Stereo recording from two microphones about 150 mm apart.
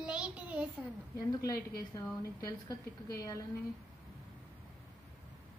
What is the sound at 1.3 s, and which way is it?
A woman's voice, 25° left (ahead or behind).